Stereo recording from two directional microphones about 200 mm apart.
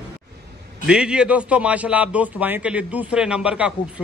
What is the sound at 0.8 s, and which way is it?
A man's voice, 5° right (ahead or behind).